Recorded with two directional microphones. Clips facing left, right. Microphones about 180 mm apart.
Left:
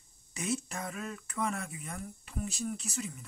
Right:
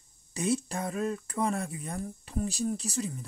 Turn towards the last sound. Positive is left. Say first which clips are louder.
# right 6 dB
turn(degrees=-35)  # may be behind; listen again after turning